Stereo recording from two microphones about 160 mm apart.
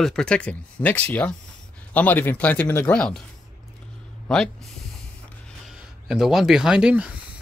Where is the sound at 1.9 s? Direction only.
10° left (ahead or behind).